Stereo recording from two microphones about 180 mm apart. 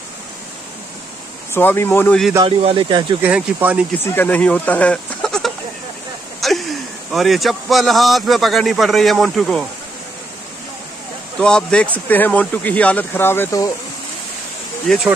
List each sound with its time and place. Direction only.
1.5 s speech: 10° left (ahead or behind)
2.4 s speech: 30° right (ahead or behind)
3.2 s speech: 10° right (ahead or behind)
4.0 s a man's voice: 10° left (ahead or behind)
11.3 s speech: 5° left (ahead or behind)